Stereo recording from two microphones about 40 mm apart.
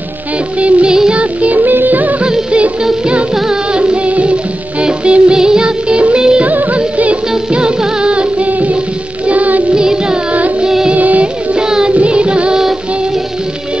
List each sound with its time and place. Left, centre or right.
0.6 s music: right
1.6 s music of bollywood: right
3.7 s music: right
6.4 s music of bollywood: right
7.0 s music: right
8.5 s music: right
9.8 s music: centre
11.0 s music of bollywood: right
11.5 s music: centre
11.9 s music: right